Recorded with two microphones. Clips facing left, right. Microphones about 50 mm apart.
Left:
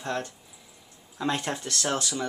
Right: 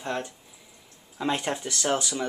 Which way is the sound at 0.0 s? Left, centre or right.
Centre.